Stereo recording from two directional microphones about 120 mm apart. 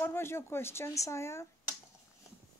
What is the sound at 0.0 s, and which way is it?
Speech, 20° left (ahead or behind).